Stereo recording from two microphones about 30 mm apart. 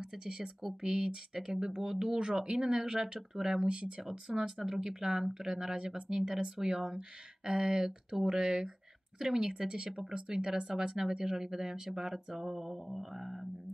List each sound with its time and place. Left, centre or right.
0.1 s speech: right
3.6 s speech: right; by 13.5 s centre